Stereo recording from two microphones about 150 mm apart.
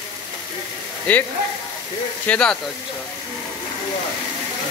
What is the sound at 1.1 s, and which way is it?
Speech, 10° left (ahead or behind).